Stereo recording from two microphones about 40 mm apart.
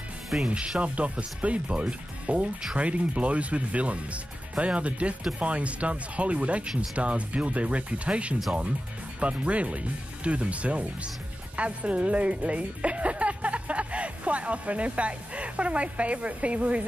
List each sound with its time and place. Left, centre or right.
0.5 s a woman's voice: right